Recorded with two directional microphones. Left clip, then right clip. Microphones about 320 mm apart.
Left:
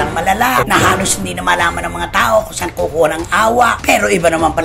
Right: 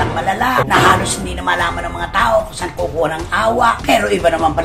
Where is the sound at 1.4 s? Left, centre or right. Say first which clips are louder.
Left 3 dB; left.